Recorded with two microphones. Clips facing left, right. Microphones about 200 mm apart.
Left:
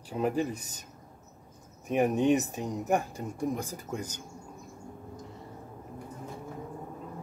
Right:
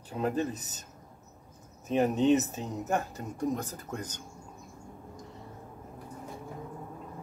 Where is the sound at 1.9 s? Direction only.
15° left (ahead or behind).